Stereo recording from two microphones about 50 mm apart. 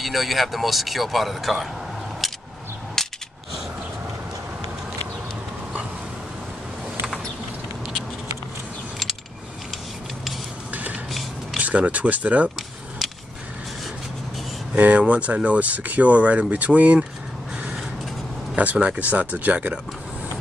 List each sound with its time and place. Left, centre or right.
0.0 s speech: centre
2.2 s a sound: centre
3.0 s coin: centre
10.7 s music: right
11.5 s speech: right
14.8 s speech: right
18.6 s speech: right